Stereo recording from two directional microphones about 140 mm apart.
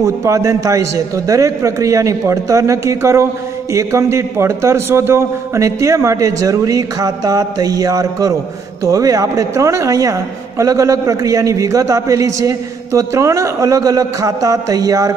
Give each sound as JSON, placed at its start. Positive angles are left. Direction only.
{"t": 0.0, "sound": "a man's voice", "side_deg": -20}